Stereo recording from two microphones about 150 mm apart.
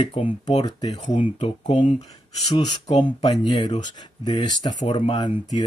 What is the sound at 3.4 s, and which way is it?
Speech, 30° left (ahead or behind).